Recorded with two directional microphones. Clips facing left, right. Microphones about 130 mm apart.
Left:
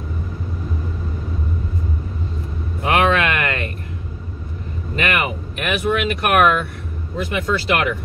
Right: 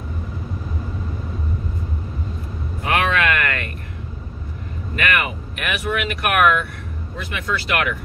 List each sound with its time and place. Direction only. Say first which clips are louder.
2.8 s vehicle: left 3 dB; 30° left (ahead or behind)
4.9 s vehicle: left 1 dB; 25° left (ahead or behind)
7.2 s speech: left 5 dB; 25° left (ahead or behind)